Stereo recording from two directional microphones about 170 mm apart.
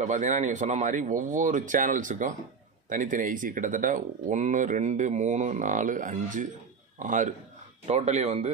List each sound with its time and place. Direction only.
0.0 s speech: 45° right (ahead or behind)